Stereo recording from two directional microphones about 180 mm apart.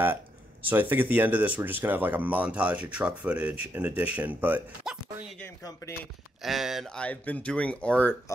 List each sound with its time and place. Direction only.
0.0 s speech: 10° right (ahead or behind)
5.4 s speech: 20° left (ahead or behind)
6.4 s speech: centre (ahead or behind)